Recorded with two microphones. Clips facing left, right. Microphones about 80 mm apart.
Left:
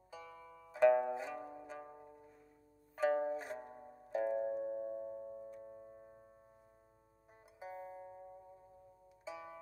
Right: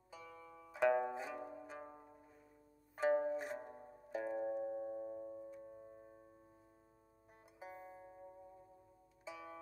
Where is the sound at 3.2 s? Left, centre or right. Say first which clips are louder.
Even; centre.